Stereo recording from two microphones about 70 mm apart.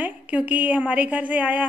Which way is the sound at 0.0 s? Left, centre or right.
Right.